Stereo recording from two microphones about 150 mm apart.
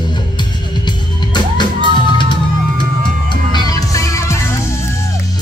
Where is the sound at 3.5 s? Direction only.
25° left (ahead or behind).